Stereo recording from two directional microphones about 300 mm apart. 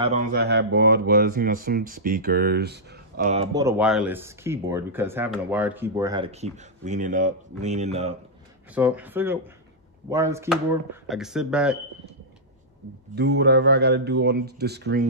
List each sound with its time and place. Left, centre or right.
0.0 s speech: right
3.5 s speech: centre
8.7 s speech: centre
13.1 s speech: right